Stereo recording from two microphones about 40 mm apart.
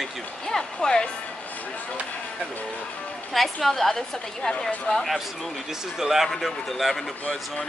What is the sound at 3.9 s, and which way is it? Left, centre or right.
A woman's voice, centre.